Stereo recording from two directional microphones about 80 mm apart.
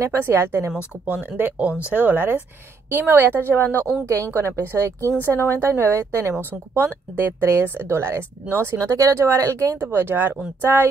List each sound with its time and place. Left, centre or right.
0.1 s speech: right
1.0 s speech: centre; by 9.8 s right
9.8 s speech: right